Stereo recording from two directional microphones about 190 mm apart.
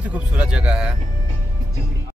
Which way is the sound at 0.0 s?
5° right (ahead or behind).